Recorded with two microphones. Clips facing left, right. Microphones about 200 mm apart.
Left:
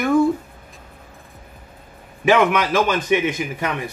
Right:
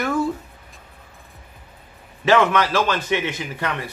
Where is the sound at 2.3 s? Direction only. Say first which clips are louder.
Left 1 dB; 15° left (ahead or behind).